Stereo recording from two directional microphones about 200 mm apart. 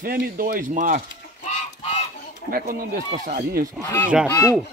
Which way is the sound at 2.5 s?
45° right (ahead or behind).